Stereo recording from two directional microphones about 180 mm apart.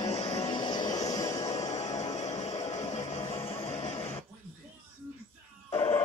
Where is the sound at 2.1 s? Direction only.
40° left (ahead or behind).